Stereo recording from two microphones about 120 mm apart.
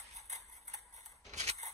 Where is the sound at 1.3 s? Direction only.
65° right (ahead or behind).